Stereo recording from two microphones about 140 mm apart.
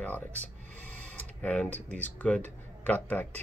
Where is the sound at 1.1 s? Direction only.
10° left (ahead or behind).